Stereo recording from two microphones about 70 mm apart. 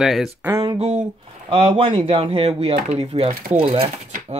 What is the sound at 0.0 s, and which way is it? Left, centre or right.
Speech, centre.